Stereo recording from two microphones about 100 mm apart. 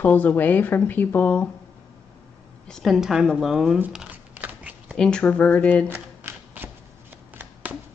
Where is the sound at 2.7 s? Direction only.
5° left (ahead or behind).